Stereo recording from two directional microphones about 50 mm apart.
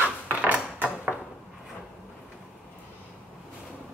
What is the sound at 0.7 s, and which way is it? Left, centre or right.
Mechanisms, right.